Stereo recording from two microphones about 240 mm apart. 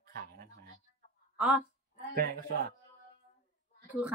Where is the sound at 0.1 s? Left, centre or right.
Right.